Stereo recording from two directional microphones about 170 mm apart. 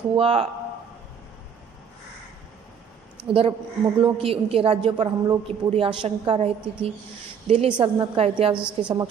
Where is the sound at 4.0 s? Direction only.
35° right (ahead or behind).